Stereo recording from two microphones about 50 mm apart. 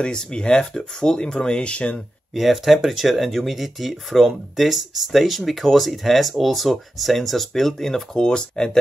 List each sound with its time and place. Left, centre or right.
0.0 s speech: centre
2.3 s speech: centre